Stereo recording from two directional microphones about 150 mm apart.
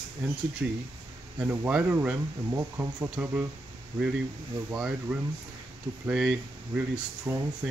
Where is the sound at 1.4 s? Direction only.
10° right (ahead or behind).